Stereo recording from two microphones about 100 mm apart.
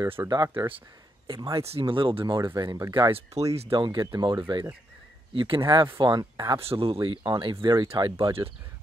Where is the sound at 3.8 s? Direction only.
50° right (ahead or behind).